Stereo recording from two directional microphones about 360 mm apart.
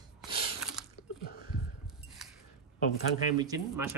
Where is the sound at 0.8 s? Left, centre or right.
Centre.